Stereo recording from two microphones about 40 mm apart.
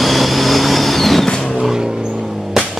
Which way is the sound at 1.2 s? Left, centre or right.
Centre.